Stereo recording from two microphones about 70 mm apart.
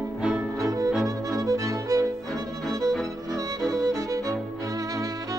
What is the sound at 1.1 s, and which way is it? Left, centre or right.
Violin, right.